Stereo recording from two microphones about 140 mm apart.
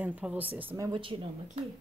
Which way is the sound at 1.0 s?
40° right (ahead or behind).